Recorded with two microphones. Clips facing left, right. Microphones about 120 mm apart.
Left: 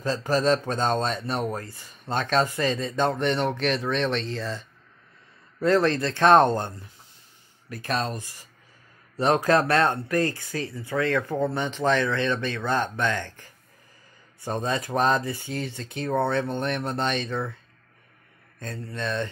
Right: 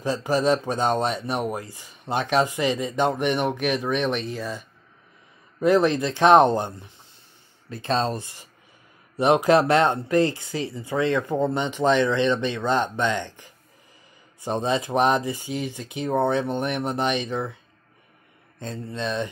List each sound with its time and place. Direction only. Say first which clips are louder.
0.0 s speech: right 1 dB; 15° right (ahead or behind)
7.7 s speech: right 4 dB; 25° right (ahead or behind)
9.1 s speech: right 3 dB; 15° right (ahead or behind)
18.6 s speech: right 2 dB; 20° right (ahead or behind)